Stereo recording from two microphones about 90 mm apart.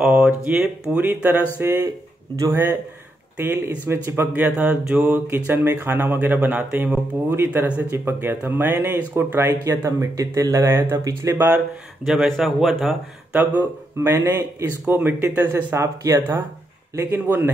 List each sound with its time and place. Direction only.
0.0 s speech: 15° right (ahead or behind); by 11.3 s 35° right (ahead or behind)
12.1 s speech: 5° right (ahead or behind)
13.3 s speech: 20° right (ahead or behind)